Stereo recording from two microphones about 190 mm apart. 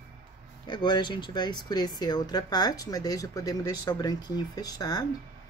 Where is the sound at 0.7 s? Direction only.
25° left (ahead or behind).